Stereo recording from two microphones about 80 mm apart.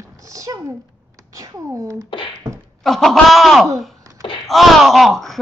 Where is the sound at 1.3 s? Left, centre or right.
Right.